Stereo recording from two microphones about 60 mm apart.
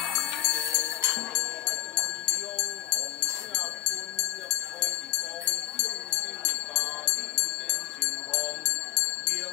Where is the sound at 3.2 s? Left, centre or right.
Centre.